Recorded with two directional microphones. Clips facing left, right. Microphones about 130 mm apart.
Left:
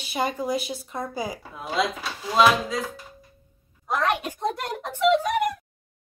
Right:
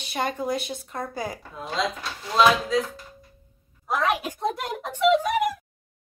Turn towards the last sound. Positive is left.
turn(degrees=0)  # may be behind; listen again after turning